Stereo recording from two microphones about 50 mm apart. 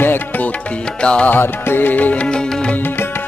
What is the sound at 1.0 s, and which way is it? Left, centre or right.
Music, centre.